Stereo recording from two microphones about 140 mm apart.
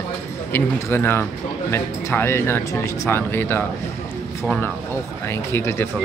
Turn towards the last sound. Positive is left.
turn(degrees=20)  # may be behind; listen again after turning